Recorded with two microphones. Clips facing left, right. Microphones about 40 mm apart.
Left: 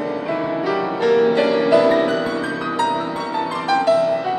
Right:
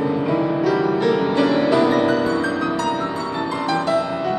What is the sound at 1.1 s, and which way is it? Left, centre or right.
Music, centre.